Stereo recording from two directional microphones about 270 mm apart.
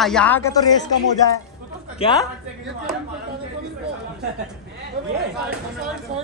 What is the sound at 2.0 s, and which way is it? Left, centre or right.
Speech, left.